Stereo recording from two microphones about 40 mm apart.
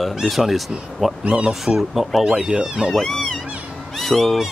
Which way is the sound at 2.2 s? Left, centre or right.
Centre.